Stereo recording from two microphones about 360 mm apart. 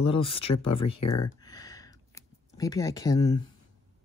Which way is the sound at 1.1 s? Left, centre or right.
Centre.